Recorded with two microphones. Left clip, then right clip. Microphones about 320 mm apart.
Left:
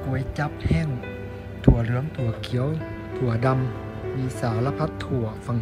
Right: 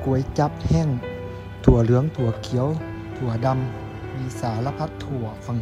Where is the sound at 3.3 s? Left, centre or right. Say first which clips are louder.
Right 1 dB; centre.